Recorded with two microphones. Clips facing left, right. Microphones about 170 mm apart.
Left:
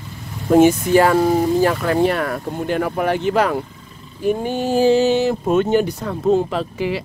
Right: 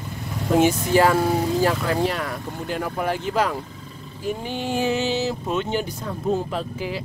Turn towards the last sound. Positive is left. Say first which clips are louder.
# left 6 dB
turn(degrees=75)  # may be behind; listen again after turning